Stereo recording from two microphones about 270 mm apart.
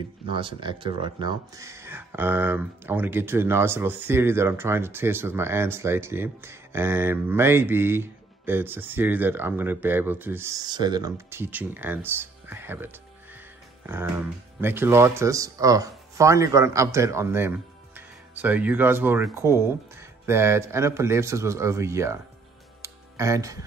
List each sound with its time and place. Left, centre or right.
0.3 s speech: centre
22.8 s music: centre